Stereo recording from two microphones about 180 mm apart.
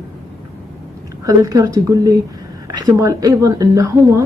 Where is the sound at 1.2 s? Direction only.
20° right (ahead or behind).